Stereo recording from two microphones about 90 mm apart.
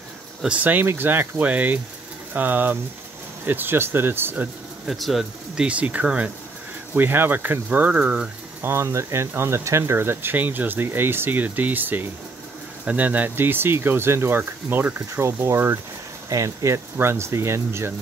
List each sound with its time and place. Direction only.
0.4 s speech: 15° right (ahead or behind)
4.8 s speech: centre (ahead or behind)
5.6 s speech: 15° right (ahead or behind)
8.6 s speech: 30° right (ahead or behind)